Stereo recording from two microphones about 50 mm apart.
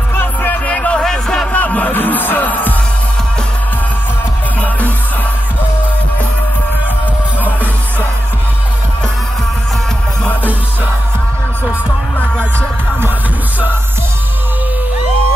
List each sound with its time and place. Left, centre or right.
0.1 s music: left
0.7 s music: left
1.0 s music: centre
1.5 s music: left
4.6 s music: left